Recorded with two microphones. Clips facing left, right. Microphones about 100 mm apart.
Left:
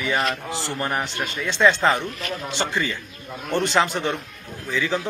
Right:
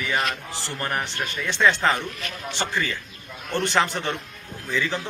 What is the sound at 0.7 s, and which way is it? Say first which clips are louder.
A man's voice: left 1 dB; 15° left (ahead or behind).